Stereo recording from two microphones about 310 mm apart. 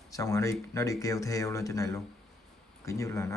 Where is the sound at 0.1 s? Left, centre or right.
Centre.